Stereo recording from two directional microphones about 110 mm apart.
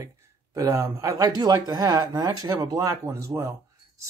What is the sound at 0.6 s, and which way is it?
Speech, 25° right (ahead or behind).